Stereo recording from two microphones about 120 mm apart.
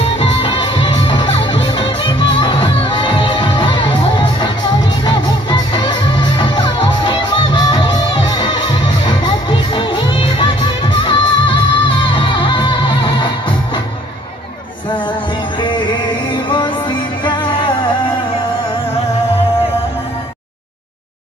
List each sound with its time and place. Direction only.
0.0 s music: 55° left (ahead or behind)